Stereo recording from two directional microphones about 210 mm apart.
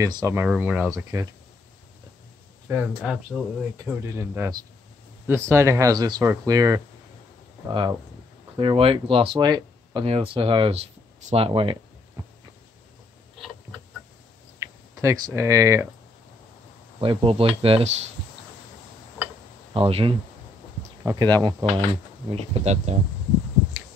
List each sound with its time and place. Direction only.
0.0 s speech: 15° right (ahead or behind)
2.7 s speech: centre (ahead or behind)
3.7 s speech: 15° right (ahead or behind)
14.6 s speech: 15° right (ahead or behind)
17.0 s speech: 25° right (ahead or behind)
19.7 s speech: 25° right (ahead or behind)
22.3 s speech: 30° right (ahead or behind)